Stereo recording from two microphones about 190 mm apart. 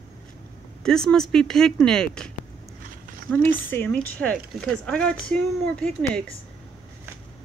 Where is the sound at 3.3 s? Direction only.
10° left (ahead or behind).